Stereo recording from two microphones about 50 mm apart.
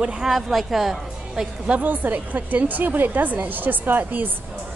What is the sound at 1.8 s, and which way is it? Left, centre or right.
A woman's voice, right.